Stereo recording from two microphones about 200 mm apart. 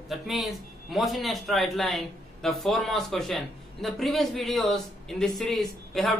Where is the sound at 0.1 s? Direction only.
Centre (ahead or behind).